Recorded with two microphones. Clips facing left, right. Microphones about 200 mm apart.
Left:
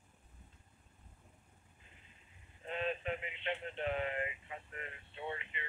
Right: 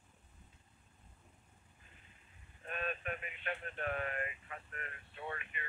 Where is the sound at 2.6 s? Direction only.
20° left (ahead or behind).